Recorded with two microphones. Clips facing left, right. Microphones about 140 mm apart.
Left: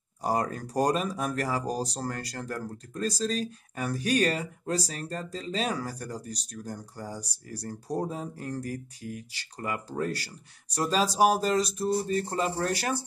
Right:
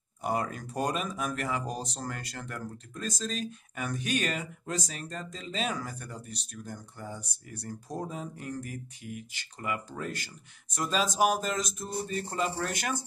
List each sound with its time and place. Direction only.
0.2 s speech: 35° left (ahead or behind)